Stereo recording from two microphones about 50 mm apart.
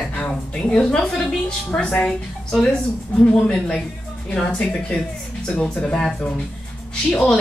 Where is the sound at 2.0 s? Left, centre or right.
Centre.